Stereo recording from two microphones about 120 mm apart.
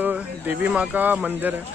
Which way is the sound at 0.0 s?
10° right (ahead or behind).